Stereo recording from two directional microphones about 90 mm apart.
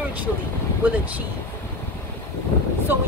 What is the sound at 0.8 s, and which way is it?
Speech, 20° right (ahead or behind).